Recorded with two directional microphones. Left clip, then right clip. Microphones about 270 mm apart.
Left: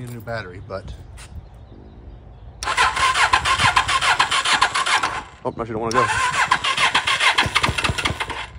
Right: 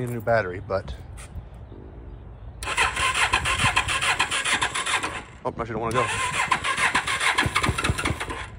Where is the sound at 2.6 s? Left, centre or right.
Centre.